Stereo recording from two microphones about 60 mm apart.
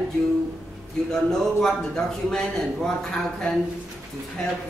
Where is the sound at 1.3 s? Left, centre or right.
Centre.